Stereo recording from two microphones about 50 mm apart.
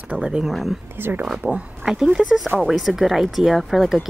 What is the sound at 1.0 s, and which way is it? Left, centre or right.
Speech, right.